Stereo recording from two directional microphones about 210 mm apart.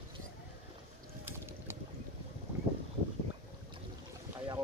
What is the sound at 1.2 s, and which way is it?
Boat, 10° right (ahead or behind).